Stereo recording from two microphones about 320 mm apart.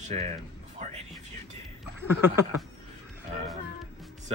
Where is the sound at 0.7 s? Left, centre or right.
Right.